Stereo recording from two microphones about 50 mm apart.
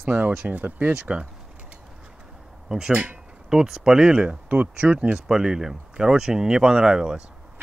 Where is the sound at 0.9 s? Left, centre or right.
Centre.